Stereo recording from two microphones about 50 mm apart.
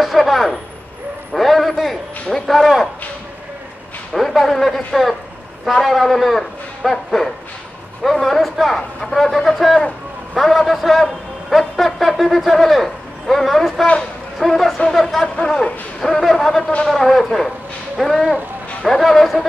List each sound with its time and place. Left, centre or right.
0.0 s vehicle: centre
1.3 s a sound: centre
4.1 s a man's voice: centre
15.2 s speech: centre
16.0 s a man's voice: centre